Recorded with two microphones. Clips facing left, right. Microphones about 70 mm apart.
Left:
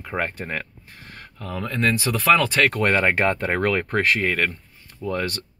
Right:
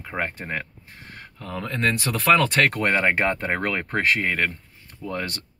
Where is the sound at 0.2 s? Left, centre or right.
Right.